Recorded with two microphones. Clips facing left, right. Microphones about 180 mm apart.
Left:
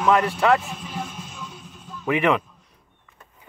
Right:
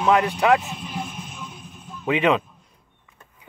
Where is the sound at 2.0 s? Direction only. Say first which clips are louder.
Right 1 dB; 20° right (ahead or behind).